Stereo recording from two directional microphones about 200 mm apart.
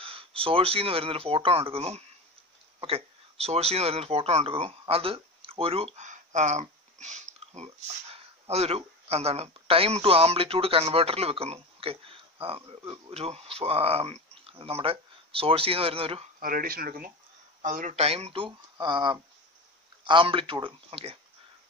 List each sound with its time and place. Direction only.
0.0 s speech: 25° right (ahead or behind)
16.3 s speech: 45° right (ahead or behind); by 21.2 s 30° right (ahead or behind)